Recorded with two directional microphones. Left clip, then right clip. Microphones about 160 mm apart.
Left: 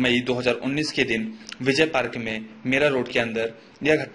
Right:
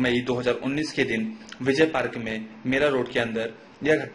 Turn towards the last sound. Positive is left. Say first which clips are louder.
# left 1 dB
turn(degrees=30)  # may be behind; listen again after turning